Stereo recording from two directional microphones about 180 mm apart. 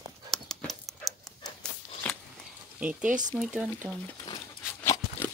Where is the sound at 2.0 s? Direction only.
5° left (ahead or behind).